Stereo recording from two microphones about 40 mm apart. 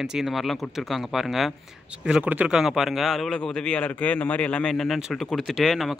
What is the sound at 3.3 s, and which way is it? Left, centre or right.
Speech, left.